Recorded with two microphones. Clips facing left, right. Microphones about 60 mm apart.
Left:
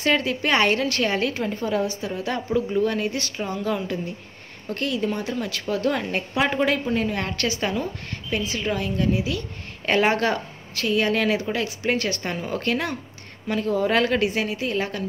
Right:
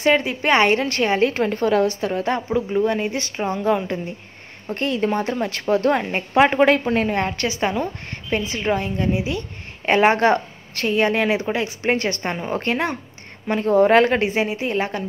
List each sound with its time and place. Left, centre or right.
0.0 s a woman's voice: right
1.3 s a woman's voice: right
2.2 s a woman's voice: right
5.0 s a woman's voice: right
6.3 s a woman's voice: right
7.2 s a woman's voice: right